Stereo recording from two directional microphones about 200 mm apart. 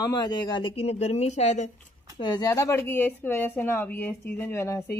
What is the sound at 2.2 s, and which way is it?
Speech, 20° left (ahead or behind).